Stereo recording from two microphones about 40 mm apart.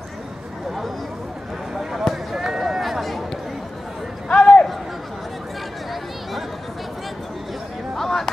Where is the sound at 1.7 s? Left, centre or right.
Centre.